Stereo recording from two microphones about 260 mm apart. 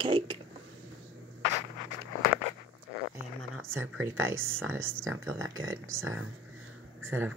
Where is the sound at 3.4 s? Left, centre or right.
Right.